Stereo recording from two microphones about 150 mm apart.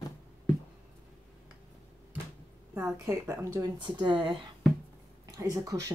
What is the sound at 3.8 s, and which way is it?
Speech, 30° right (ahead or behind).